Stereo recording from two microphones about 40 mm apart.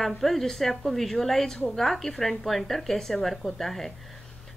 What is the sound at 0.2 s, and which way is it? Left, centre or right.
A woman's voice, centre.